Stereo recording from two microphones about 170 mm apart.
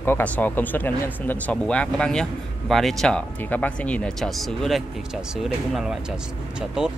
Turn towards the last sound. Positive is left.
turn(degrees=-5)  # may be behind; listen again after turning